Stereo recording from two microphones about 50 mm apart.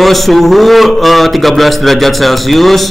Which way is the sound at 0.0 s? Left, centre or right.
Centre.